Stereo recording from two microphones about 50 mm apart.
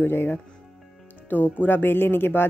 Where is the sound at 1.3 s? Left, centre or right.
Left.